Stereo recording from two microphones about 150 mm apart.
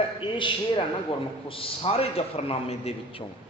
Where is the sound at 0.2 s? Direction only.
35° left (ahead or behind).